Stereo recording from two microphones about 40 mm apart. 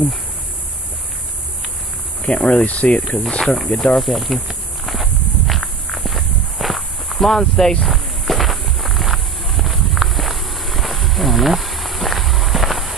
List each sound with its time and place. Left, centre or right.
2.2 s speech: left
2.6 s speech: left
3.1 s speech: centre
4.0 s a sound: centre
5.5 s walk: centre
7.8 s walk: centre